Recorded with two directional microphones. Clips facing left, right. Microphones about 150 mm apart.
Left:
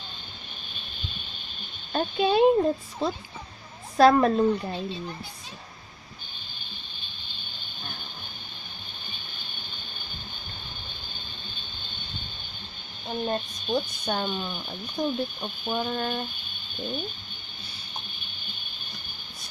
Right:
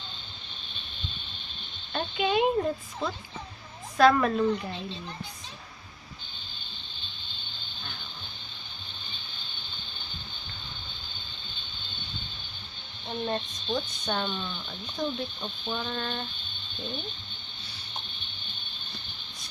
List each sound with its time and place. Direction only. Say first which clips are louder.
1.9 s speech: left 4 dB; 35° left (ahead or behind)
13.1 s speech: left 2 dB; 10° left (ahead or behind)
16.7 s a sound: left 4 dB; 10° left (ahead or behind)